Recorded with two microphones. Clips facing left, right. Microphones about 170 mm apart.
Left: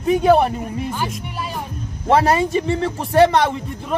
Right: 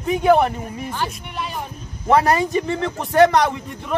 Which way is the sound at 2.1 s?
30° left (ahead or behind).